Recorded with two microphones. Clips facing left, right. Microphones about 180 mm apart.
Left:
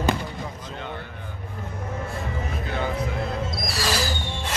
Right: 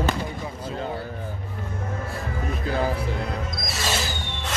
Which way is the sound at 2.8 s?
30° right (ahead or behind).